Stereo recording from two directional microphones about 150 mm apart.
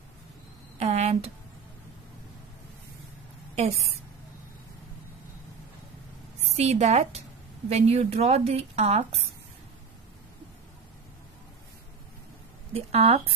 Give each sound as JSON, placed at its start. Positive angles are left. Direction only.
{"t": 0.7, "sound": "a sound", "side_deg": -45}
{"t": 6.5, "sound": "a woman's voice", "side_deg": -45}
{"t": 12.7, "sound": "speech", "side_deg": -40}